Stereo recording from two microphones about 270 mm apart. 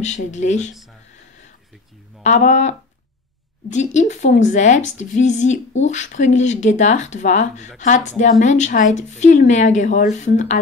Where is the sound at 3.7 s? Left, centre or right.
Left.